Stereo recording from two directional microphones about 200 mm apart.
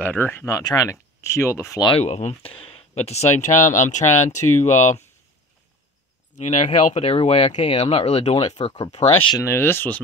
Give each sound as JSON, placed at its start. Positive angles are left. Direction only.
{"t": 0.0, "sound": "speech", "side_deg": 10}
{"t": 2.0, "sound": "speech", "side_deg": 35}
{"t": 4.6, "sound": "speech", "side_deg": 10}
{"t": 6.3, "sound": "speech", "side_deg": 35}
{"t": 9.3, "sound": "speech", "side_deg": 15}